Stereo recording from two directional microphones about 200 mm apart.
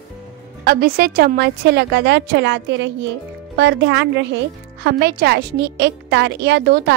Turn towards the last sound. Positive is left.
turn(degrees=-55)  # may be behind; listen again after turning